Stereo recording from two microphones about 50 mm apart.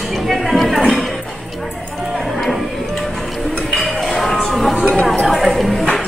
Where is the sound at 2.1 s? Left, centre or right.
Centre.